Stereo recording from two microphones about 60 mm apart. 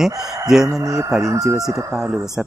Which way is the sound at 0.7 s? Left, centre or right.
Right.